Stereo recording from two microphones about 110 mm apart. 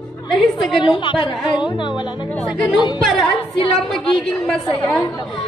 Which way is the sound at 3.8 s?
Centre (ahead or behind).